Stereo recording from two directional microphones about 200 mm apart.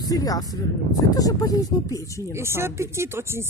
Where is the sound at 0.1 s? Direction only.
20° left (ahead or behind).